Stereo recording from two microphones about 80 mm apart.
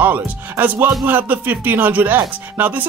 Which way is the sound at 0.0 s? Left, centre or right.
Right.